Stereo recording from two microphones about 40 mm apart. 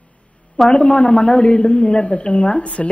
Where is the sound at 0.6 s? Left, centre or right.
Left.